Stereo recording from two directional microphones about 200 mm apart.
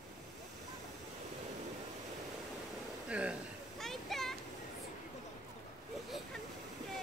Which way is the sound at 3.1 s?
5° right (ahead or behind).